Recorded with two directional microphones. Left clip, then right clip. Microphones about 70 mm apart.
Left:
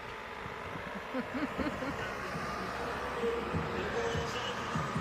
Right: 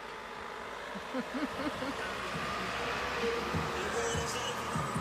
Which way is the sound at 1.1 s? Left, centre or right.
Centre.